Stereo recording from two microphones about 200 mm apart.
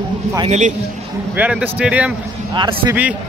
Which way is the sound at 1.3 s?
10° right (ahead or behind).